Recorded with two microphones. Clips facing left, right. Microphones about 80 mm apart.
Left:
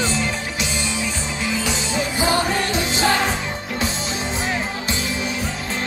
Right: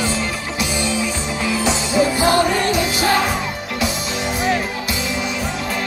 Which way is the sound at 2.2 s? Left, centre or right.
Left.